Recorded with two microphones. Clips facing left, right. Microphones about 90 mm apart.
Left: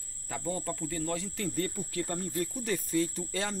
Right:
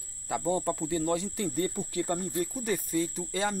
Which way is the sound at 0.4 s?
20° right (ahead or behind).